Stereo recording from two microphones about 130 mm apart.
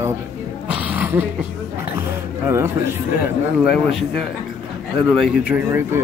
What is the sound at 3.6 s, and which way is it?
Speech, centre (ahead or behind).